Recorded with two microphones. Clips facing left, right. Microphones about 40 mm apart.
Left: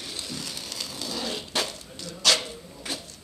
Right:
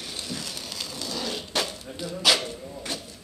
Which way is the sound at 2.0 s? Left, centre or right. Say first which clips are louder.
Right 1 dB; centre.